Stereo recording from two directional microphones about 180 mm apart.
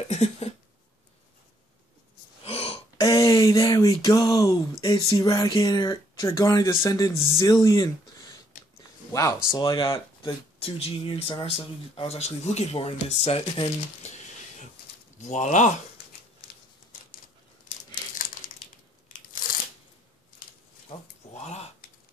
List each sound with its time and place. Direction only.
0.1 s cough: 35° left (ahead or behind)
2.4 s throat clearing: 35° left (ahead or behind)
3.0 s speech: 20° left (ahead or behind)
9.9 s speech: 30° left (ahead or behind)
15.1 s speech: 40° left (ahead or behind)
20.9 s a sound: 35° left (ahead or behind)